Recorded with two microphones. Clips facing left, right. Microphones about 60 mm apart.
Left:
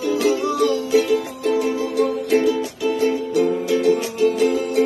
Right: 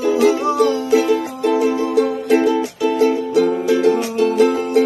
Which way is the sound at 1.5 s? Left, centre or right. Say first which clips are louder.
Right 3 dB; right.